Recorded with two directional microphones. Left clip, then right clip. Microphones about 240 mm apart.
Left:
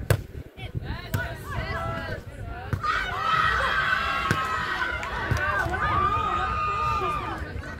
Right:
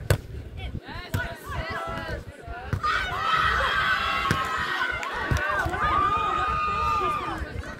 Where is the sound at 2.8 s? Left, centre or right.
Right.